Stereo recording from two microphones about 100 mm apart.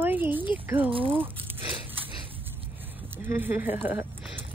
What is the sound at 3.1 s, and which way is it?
Speech, 20° right (ahead or behind).